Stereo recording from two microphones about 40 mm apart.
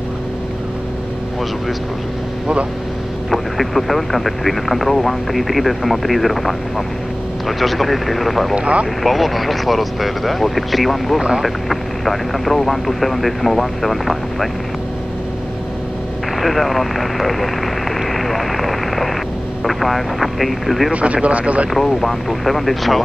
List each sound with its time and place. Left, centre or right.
3.3 s speech: centre
8.5 s speech: right
9.0 s speech: centre
16.3 s speech: centre
18.1 s vehicle: centre
19.6 s speech: centre
20.9 s speech: right
21.7 s speech: centre